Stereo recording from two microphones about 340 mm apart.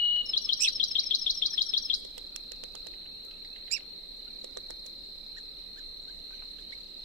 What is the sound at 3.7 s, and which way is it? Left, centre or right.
Cricket, right.